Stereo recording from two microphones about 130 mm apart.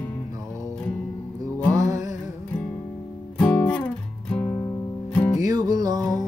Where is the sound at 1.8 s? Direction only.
25° right (ahead or behind).